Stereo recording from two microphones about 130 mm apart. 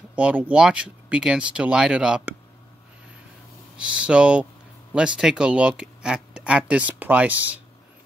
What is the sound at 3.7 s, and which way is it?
Speech, 10° right (ahead or behind).